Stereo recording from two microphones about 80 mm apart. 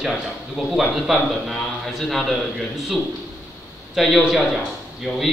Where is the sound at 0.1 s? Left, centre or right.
Centre.